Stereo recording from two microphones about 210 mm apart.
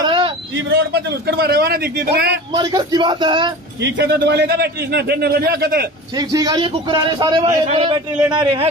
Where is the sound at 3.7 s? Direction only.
55° right (ahead or behind).